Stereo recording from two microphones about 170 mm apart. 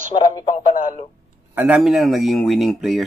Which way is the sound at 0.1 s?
35° left (ahead or behind).